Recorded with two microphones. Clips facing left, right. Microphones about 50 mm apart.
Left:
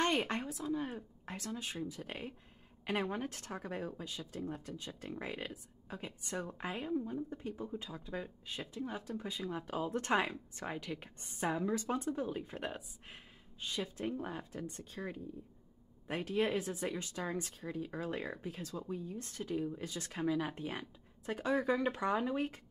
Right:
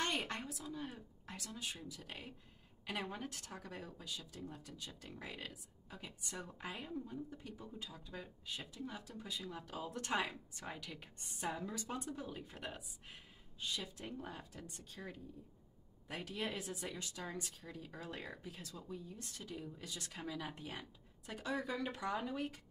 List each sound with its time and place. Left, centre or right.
0.0 s a sound: left
0.5 s a woman's voice: left
16.1 s a woman's voice: left
17.6 s a woman's voice: left